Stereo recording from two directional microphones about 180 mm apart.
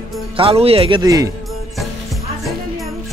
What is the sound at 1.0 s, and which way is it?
Speech, 20° right (ahead or behind).